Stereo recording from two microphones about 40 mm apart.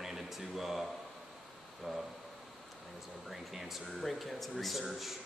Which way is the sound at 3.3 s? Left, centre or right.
Centre.